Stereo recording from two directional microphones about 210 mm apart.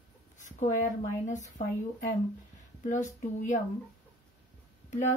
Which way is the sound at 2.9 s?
35° left (ahead or behind).